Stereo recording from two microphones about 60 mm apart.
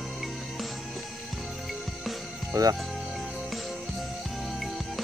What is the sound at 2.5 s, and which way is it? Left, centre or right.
Speech, right.